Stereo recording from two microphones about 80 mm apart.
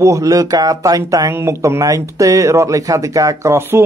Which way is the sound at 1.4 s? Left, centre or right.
Right.